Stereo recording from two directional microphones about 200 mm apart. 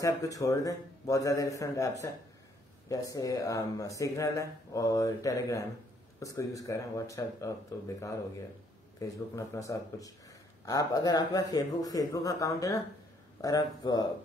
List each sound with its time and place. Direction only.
0.0 s speech: 15° left (ahead or behind)
9.0 s speech: 15° left (ahead or behind)